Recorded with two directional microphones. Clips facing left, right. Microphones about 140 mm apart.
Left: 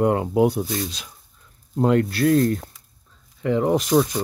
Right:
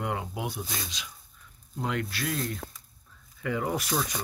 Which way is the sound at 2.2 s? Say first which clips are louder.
Left 14 dB; 50° left (ahead or behind).